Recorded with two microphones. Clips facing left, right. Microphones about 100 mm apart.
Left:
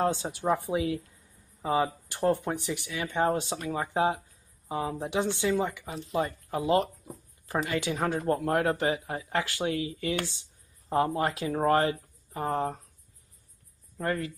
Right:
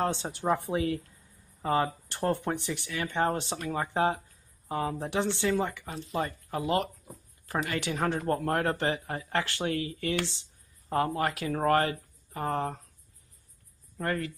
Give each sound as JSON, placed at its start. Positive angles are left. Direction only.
{"t": 0.0, "sound": "speech", "side_deg": 10}
{"t": 7.1, "sound": "a sound", "side_deg": 5}
{"t": 7.6, "sound": "speech", "side_deg": 15}
{"t": 14.0, "sound": "speech", "side_deg": 15}